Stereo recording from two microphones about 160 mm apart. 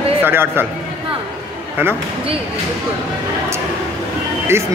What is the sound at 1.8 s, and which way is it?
Speech, 15° right (ahead or behind).